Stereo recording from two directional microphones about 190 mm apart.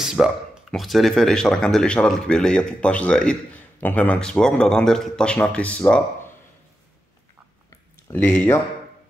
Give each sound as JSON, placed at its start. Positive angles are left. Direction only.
{"t": 0.0, "sound": "speech", "side_deg": 0}
{"t": 8.1, "sound": "speech", "side_deg": 15}